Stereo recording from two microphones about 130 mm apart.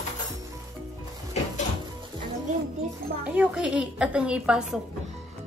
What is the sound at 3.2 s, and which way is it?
A woman's voice, 10° right (ahead or behind).